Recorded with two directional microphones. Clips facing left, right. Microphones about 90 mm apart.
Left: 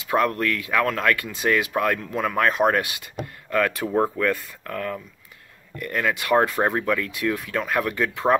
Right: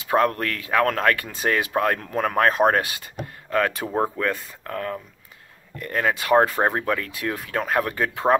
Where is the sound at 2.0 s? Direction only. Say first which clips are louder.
Right 2 dB; 40° right (ahead or behind).